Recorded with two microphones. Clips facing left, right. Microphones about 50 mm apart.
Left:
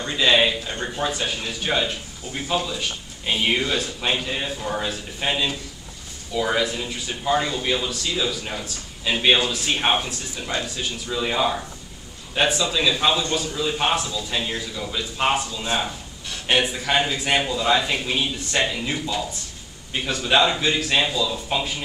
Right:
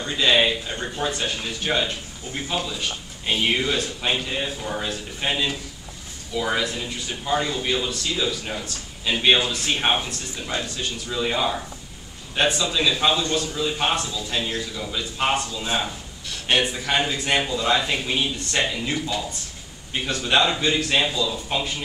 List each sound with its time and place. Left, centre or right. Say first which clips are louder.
0.0 s a man's voice: left 1 dB; centre